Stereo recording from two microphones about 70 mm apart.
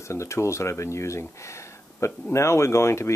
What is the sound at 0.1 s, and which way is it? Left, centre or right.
Speech, left.